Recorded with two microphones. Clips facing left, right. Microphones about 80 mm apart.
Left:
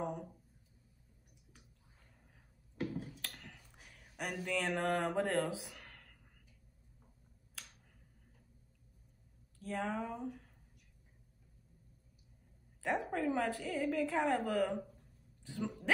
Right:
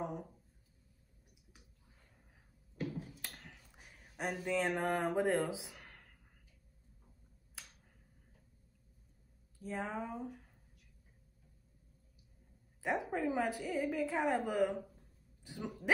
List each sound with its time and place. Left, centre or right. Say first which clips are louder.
3.2 s a sound: left 1 dB; centre
9.6 s a woman's voice: left 2 dB; centre
12.8 s a woman's voice: even; centre